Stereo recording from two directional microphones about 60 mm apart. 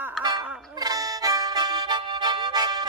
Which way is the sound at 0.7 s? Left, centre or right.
Right.